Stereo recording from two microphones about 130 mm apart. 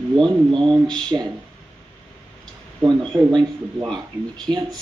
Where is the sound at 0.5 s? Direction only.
35° right (ahead or behind).